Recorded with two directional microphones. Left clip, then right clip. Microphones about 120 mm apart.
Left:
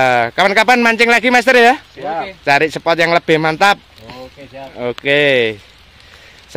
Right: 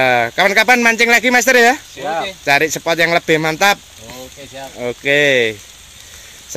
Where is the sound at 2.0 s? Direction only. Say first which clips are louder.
Right 1 dB; 10° right (ahead or behind).